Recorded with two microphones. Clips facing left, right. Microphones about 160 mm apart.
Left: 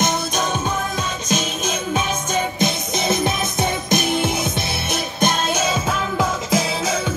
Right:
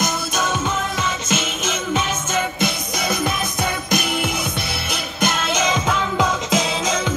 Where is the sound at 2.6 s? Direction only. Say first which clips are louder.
Left 2 dB; 25° left (ahead or behind).